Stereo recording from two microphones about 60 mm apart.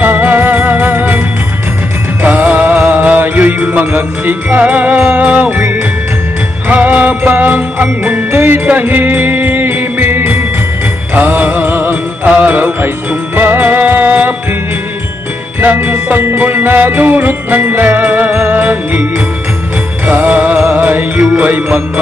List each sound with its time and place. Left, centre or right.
0.0 s music: right
2.2 s music: right
6.7 s jingle bell: right
8.6 s music: right
15.6 s jingle bell: right
18.4 s music: right
20.1 s music: right